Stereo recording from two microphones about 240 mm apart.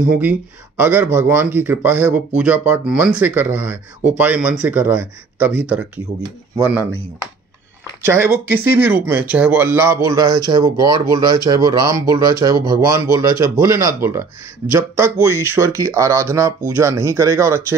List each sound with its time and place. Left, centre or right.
0.1 s speech: centre
8.0 s speech: centre